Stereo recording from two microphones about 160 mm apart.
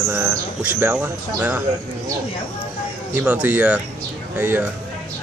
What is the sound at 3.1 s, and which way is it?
Speech, 10° right (ahead or behind).